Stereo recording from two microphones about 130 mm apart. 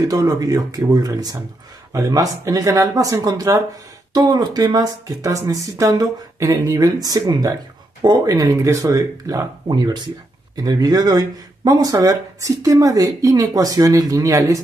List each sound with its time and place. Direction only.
0.0 s speech: 30° right (ahead or behind)